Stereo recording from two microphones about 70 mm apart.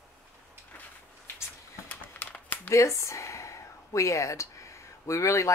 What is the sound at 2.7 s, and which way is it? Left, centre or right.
Speech, left.